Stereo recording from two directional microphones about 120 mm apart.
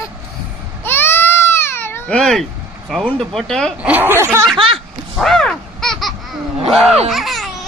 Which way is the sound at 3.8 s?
15° right (ahead or behind).